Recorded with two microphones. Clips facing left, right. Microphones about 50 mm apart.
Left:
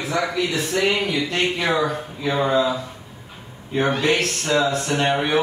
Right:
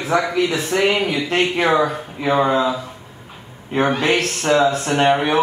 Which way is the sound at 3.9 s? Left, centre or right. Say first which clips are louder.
Right 2 dB; right.